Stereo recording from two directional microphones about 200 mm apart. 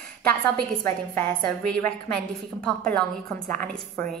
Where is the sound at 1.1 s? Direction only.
5° left (ahead or behind).